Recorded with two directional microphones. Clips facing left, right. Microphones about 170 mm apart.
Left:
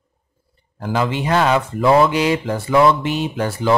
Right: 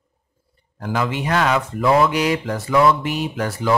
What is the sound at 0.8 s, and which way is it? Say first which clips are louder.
Speech: left 2 dB; 30° left (ahead or behind).